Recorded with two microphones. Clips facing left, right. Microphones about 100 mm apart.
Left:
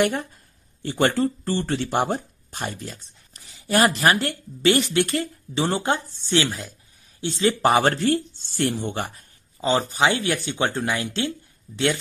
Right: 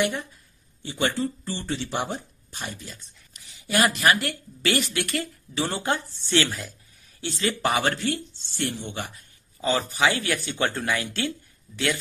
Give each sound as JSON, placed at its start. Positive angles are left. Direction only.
{"t": 0.0, "sound": "speech", "side_deg": 50}
{"t": 7.6, "sound": "speech", "side_deg": 35}
{"t": 9.6, "sound": "speech", "side_deg": 25}